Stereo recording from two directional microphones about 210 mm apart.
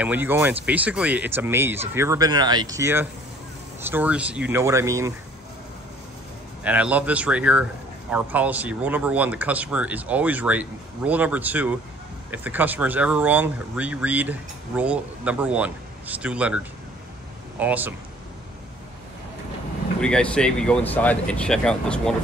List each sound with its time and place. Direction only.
0.0 s speech: 10° right (ahead or behind)
6.6 s speech: 5° right (ahead or behind)
20.0 s speech: 5° left (ahead or behind)